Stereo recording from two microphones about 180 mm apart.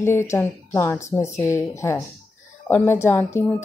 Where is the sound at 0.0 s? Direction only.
15° left (ahead or behind).